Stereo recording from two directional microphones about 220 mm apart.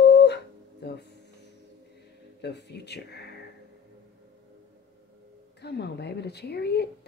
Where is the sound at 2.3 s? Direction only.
50° left (ahead or behind).